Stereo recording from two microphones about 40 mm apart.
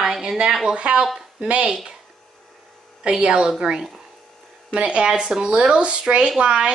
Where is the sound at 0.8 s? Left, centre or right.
Right.